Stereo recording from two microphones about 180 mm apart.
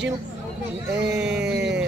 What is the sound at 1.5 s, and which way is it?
Music, 70° right (ahead or behind).